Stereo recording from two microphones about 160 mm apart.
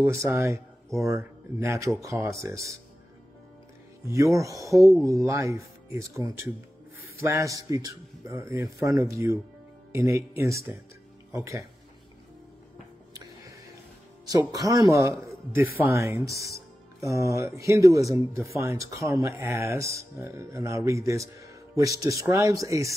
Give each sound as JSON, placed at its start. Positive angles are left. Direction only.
{"t": 0.0, "sound": "speech", "side_deg": -20}
{"t": 4.1, "sound": "speech", "side_deg": -20}
{"t": 14.4, "sound": "speech", "side_deg": -20}